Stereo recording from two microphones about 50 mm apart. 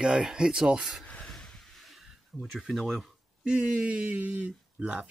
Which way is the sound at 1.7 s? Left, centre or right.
Centre.